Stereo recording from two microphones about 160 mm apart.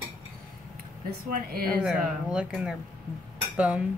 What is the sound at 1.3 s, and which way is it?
Speech, 65° right (ahead or behind).